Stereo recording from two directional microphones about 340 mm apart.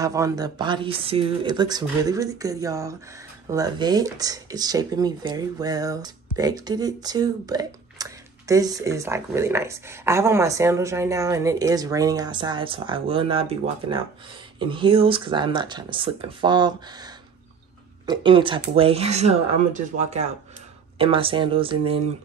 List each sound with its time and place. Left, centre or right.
0.0 s speech: centre